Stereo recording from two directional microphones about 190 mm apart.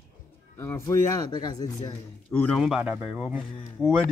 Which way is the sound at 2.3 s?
10° left (ahead or behind).